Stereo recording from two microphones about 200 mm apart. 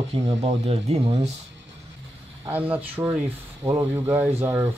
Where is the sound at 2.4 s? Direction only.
10° right (ahead or behind).